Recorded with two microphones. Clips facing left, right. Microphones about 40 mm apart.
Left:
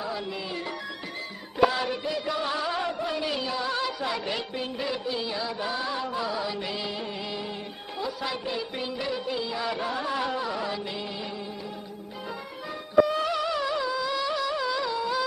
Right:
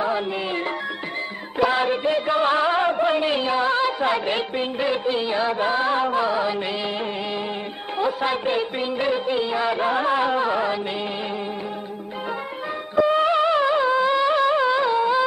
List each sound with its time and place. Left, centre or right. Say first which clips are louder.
1.7 s music: right 8 dB; right
8.0 s music: right 9 dB; right
13.0 s music: right 10 dB; right